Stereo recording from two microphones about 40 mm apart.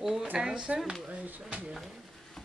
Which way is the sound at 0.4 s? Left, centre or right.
Right.